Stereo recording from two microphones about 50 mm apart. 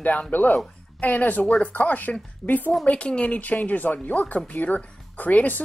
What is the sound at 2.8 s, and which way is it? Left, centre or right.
Speech, left.